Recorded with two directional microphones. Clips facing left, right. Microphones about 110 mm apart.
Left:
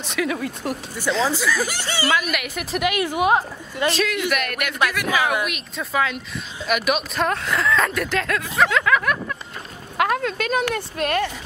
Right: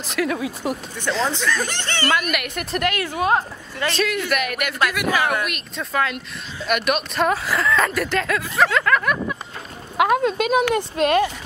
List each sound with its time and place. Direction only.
0.0 s speech: centre (ahead or behind)
2.9 s speech: 15° left (ahead or behind)
3.9 s speech: centre (ahead or behind)
5.1 s speech: 10° left (ahead or behind)
9.9 s speech: 10° right (ahead or behind)